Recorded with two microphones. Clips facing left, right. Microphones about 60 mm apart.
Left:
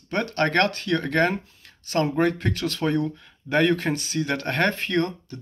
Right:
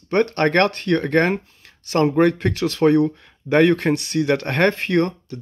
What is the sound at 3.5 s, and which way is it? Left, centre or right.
Speech, right.